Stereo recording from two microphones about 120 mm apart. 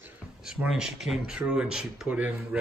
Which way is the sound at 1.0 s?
5° right (ahead or behind).